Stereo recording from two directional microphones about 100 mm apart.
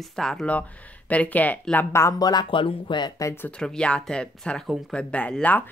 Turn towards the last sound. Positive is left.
turn(degrees=15)  # may be behind; listen again after turning